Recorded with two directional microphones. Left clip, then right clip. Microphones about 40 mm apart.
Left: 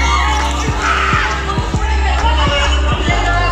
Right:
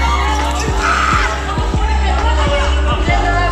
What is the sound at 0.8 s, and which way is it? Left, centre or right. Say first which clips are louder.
Music: even; right.